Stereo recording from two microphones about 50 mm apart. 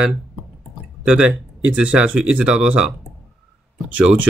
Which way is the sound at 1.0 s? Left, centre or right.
Right.